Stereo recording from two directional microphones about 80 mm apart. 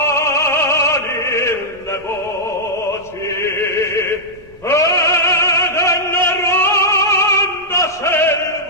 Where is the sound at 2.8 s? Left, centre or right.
Left.